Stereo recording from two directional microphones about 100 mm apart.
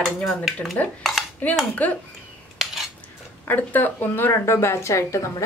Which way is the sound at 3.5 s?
20° left (ahead or behind).